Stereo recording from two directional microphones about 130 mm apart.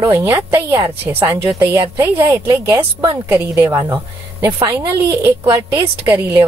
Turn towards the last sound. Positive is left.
turn(degrees=-15)  # may be behind; listen again after turning